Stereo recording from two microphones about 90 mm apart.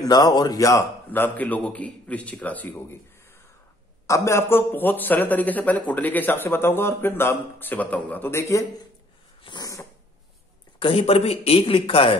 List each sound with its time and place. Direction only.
0.0 s speech: 50° left (ahead or behind)
1.1 s a man's voice: 20° left (ahead or behind)
4.1 s a man's voice: 35° left (ahead or behind)
9.6 s dog: 40° left (ahead or behind)
10.8 s a man's voice: 90° left